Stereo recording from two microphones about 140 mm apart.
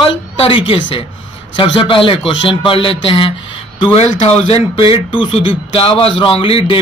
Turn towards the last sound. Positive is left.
turn(degrees=40)  # may be behind; listen again after turning